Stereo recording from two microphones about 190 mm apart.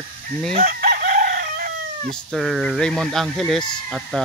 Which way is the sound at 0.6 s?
50° right (ahead or behind).